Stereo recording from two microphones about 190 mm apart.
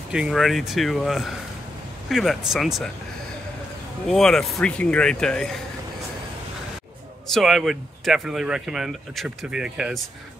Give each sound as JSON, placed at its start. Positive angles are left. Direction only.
{"t": 0.1, "sound": "speech", "side_deg": -5}
{"t": 4.1, "sound": "speech", "side_deg": 0}
{"t": 7.3, "sound": "speech", "side_deg": 0}